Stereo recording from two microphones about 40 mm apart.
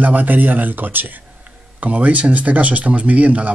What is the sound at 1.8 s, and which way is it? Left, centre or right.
Speech, right.